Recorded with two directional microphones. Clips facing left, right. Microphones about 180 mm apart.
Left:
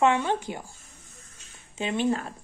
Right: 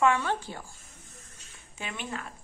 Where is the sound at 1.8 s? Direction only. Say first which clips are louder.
Left 12 dB; 30° left (ahead or behind).